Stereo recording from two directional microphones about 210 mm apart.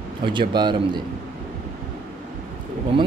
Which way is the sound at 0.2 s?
20° right (ahead or behind).